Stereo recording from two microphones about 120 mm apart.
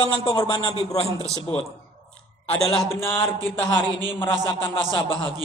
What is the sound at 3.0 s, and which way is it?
Speech, 20° left (ahead or behind).